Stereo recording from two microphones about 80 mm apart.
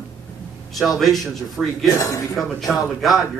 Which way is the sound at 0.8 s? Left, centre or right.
Centre.